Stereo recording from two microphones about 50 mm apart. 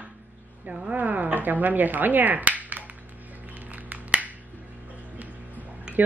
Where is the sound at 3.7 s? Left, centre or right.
Right.